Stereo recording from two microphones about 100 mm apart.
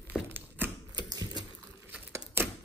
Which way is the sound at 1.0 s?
45° right (ahead or behind).